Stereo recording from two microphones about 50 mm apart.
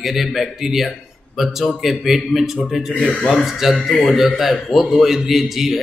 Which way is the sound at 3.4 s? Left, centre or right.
Centre.